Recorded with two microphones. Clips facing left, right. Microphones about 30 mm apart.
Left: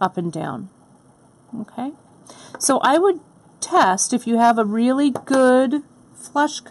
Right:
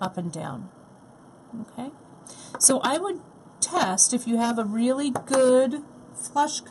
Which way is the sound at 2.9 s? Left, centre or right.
Centre.